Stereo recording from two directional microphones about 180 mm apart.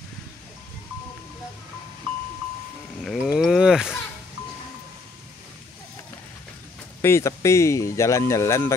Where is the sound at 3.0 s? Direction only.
Centre (ahead or behind).